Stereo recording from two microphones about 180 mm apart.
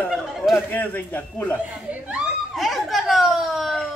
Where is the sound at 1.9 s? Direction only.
5° right (ahead or behind).